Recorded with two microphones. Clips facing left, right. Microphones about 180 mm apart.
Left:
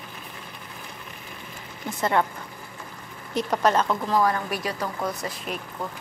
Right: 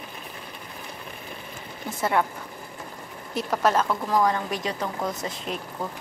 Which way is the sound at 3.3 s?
5° right (ahead or behind).